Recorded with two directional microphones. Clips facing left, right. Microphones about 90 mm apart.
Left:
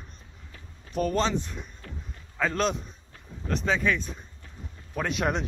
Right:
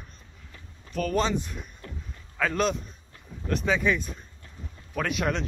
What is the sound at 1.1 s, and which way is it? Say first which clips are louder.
A man's voice: even; 5° right (ahead or behind).